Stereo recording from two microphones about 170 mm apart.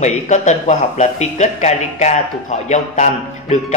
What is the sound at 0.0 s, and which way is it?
Speech, 45° left (ahead or behind).